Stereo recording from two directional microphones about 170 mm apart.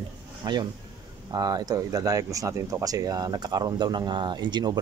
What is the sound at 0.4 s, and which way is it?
Speech, 25° right (ahead or behind).